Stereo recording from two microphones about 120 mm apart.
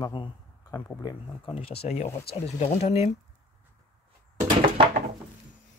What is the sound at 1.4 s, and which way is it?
Speech, 50° left (ahead or behind).